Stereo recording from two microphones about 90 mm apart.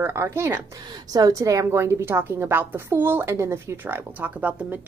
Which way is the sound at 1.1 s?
40° right (ahead or behind).